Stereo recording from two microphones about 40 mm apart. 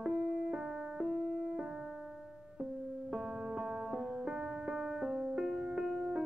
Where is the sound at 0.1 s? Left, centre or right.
Right.